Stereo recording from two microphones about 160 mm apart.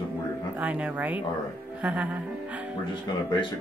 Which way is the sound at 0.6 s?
10° right (ahead or behind).